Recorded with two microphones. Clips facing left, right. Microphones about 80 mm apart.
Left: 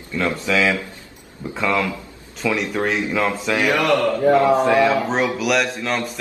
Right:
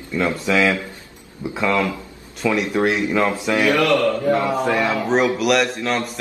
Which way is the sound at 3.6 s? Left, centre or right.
Left.